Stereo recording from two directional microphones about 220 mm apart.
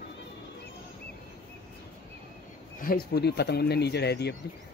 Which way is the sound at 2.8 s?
45° left (ahead or behind).